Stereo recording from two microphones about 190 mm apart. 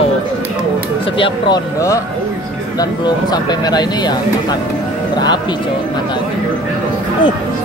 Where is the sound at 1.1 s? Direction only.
25° left (ahead or behind).